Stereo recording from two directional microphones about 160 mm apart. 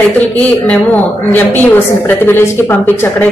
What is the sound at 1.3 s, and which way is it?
A woman's voice, 10° left (ahead or behind).